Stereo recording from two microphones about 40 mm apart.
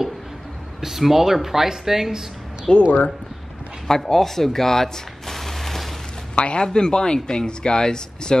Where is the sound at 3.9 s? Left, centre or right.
Centre.